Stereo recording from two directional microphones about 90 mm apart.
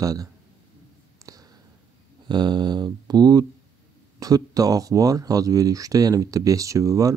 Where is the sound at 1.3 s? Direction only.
40° right (ahead or behind).